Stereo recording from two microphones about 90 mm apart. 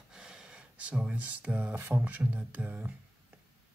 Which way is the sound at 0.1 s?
10° right (ahead or behind).